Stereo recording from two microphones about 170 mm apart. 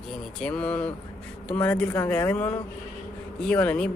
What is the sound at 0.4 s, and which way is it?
Speech, 10° left (ahead or behind).